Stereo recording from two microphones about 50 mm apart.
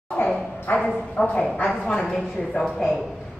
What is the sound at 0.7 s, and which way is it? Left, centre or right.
Speech, left.